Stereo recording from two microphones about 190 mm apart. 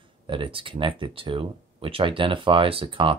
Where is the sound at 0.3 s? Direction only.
25° right (ahead or behind).